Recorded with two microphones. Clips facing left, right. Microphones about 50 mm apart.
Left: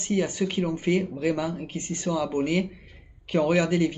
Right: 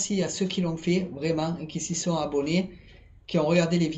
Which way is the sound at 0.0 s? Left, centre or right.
Left.